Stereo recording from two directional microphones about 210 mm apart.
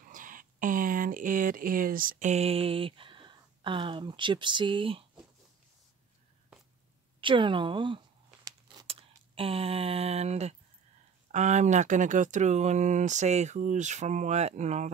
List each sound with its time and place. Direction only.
0.0 s speech: 40° right (ahead or behind)
7.2 s speech: 25° right (ahead or behind)
8.5 s a sound: 20° right (ahead or behind)
11.3 s speech: 35° right (ahead or behind)